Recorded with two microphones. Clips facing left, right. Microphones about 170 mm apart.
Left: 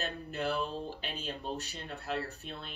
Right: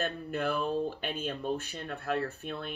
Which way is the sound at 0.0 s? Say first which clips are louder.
Right 4 dB; 50° right (ahead or behind).